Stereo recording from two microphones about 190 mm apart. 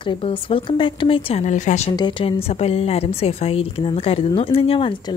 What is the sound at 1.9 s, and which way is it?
A woman's voice, 25° left (ahead or behind).